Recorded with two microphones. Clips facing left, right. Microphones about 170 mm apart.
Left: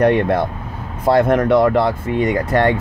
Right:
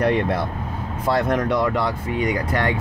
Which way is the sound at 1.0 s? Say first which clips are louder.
Left 7 dB; 60° left (ahead or behind).